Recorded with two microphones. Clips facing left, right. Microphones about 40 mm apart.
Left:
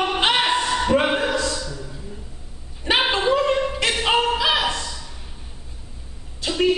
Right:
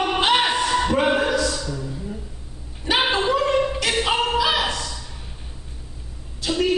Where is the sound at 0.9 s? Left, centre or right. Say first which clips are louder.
Left 3 dB; left.